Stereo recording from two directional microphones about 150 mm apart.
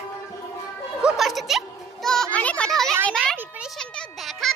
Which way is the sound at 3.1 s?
5° left (ahead or behind).